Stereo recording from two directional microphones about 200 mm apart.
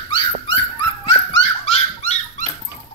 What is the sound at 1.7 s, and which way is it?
Dog, 35° left (ahead or behind).